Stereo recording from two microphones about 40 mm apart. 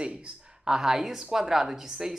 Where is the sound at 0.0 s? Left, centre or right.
Right.